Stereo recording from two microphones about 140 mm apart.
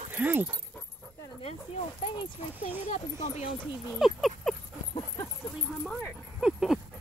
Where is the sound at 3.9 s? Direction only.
Centre (ahead or behind).